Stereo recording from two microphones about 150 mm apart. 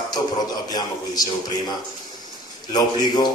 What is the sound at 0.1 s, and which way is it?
A man's voice, 25° left (ahead or behind).